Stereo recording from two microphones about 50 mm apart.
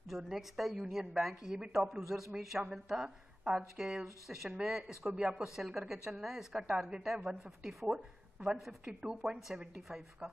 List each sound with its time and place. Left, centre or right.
0.2 s a woman's voice: centre
7.2 s a woman's voice: right
7.6 s a woman's voice: centre